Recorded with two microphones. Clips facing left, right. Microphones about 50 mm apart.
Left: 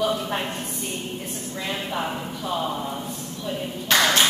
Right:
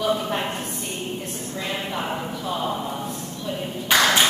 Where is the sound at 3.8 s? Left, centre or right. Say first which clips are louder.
Right 1 dB; centre.